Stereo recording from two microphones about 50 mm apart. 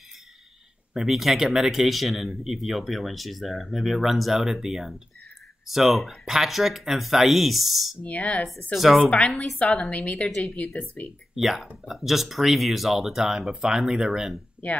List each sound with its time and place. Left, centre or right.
0.9 s speech: centre
8.0 s a woman's voice: left
8.7 s speech: centre
9.6 s a woman's voice: left
10.2 s a woman's voice: centre
10.5 s speech: left
11.3 s speech: centre